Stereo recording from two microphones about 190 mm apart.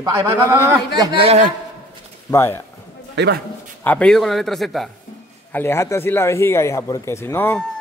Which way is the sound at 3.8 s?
5° left (ahead or behind).